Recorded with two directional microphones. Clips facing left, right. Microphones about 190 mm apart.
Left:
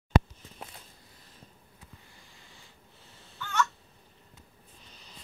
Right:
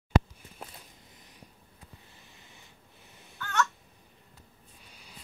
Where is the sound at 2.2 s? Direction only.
20° right (ahead or behind).